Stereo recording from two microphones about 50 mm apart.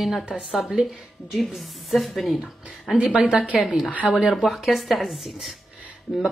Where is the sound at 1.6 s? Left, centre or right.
Centre.